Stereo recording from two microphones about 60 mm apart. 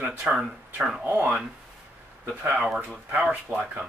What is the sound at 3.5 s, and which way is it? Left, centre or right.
Speech, right.